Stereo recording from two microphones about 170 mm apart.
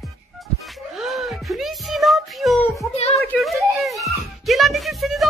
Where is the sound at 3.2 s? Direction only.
Centre (ahead or behind).